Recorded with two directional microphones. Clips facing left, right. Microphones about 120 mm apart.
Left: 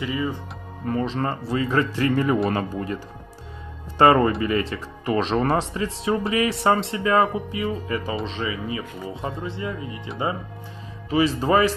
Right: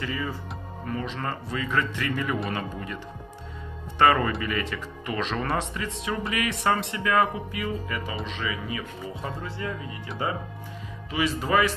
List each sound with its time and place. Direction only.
0.0 s speech: 20° left (ahead or behind)
0.8 s speech: 35° left (ahead or behind)
4.0 s speech: 30° left (ahead or behind)
11.1 s speech: 30° left (ahead or behind)